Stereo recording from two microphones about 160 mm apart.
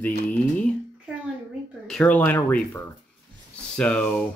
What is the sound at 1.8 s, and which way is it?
Speech, 5° left (ahead or behind).